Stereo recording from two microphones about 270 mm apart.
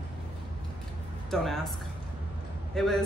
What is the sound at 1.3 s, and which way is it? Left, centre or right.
Speech, centre.